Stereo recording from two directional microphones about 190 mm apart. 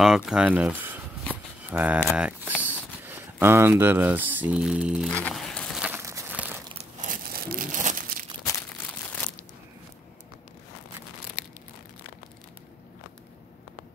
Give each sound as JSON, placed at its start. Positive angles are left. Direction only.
{"t": 0.0, "sound": "speech", "side_deg": -5}
{"t": 1.3, "sound": "a sound", "side_deg": -10}
{"t": 6.7, "sound": "crumpling", "side_deg": -40}